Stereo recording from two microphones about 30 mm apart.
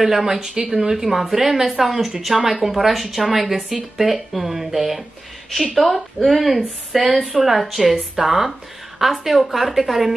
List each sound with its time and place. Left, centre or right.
0.0 s a woman's voice: centre
5.5 s speech: centre
7.8 s speech: centre
8.3 s a woman's voice: centre